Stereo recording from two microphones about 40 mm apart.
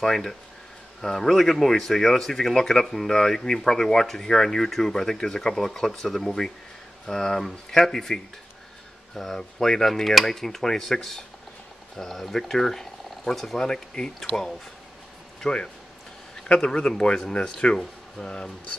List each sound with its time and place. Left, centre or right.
0.0 s speech: centre
13.7 s speech: centre
15.4 s speech: centre